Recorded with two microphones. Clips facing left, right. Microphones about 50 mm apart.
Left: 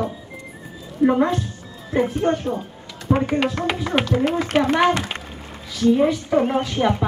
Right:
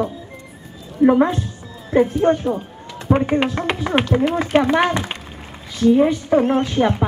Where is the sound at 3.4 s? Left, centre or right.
Right.